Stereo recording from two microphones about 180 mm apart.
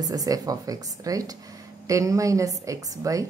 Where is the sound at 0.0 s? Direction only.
20° right (ahead or behind).